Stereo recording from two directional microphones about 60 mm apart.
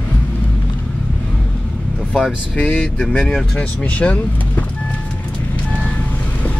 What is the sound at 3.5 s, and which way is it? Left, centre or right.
Speech, left.